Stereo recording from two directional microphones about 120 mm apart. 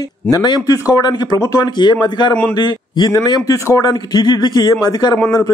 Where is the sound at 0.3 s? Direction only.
35° left (ahead or behind).